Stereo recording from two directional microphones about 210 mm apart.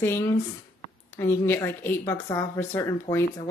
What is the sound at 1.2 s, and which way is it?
A woman's voice, 10° left (ahead or behind).